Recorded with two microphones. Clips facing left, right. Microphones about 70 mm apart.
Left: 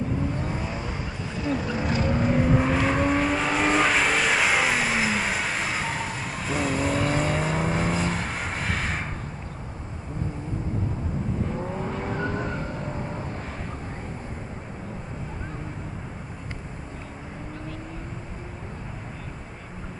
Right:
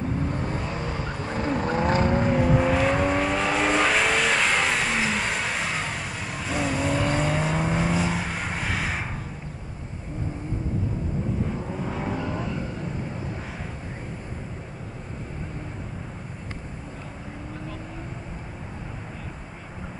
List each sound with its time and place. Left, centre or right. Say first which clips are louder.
0.5 s vehicle: right 1 dB; centre
1.1 s a sound: right 4 dB; right
1.6 s vehicle: right 4 dB; right
2.3 s vehicle: right 1 dB; centre
11.8 s vehicle: even; centre
12.2 s vehicle: left 1 dB; left